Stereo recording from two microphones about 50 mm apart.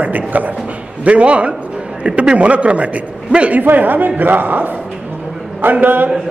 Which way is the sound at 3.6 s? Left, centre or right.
Right.